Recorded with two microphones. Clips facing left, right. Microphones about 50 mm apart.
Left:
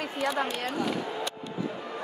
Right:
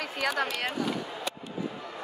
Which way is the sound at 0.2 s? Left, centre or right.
Right.